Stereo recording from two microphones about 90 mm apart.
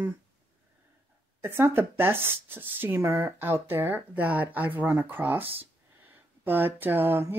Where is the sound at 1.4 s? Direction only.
25° right (ahead or behind).